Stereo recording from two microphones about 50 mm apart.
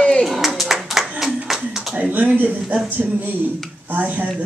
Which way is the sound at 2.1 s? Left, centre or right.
Right.